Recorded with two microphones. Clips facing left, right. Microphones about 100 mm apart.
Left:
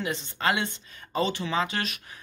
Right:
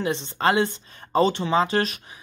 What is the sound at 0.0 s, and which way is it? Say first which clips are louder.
Speech: right 5 dB; 30° right (ahead or behind).